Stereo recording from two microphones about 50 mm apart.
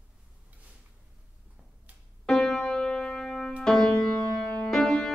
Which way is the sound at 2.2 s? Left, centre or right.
Centre.